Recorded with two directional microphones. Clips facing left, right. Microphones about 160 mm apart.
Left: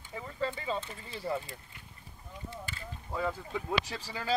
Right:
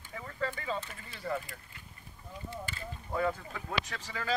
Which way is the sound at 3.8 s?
30° left (ahead or behind).